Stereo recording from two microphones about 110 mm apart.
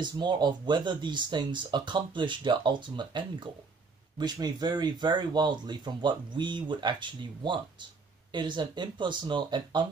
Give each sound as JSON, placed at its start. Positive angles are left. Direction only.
{"t": 0.0, "sound": "speech", "side_deg": -40}